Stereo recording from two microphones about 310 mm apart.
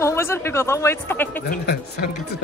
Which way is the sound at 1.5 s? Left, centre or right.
Left.